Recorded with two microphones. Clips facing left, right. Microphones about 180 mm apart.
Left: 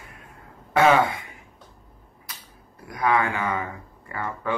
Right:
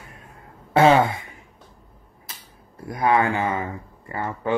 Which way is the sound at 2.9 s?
30° right (ahead or behind).